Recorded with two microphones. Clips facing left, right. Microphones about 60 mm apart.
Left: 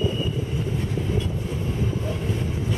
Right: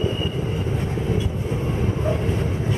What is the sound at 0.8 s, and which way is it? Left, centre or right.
Vehicle, right.